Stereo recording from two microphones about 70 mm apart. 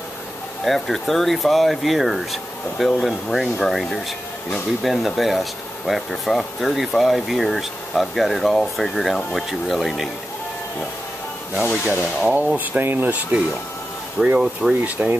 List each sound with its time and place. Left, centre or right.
0.7 s speech: centre
11.9 s speech: centre
12.3 s speech: right
14.2 s speech: centre
14.7 s speech: centre